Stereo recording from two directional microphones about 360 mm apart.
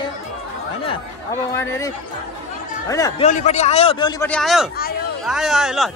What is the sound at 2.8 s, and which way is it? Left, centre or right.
A man's voice, centre.